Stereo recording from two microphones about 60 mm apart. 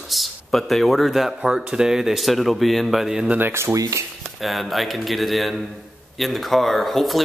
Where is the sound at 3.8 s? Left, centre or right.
Right.